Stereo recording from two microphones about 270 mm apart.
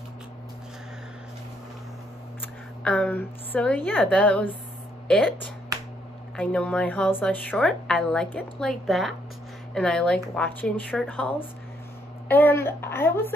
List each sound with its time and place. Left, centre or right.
2.8 s a woman's voice: centre
6.3 s a woman's voice: centre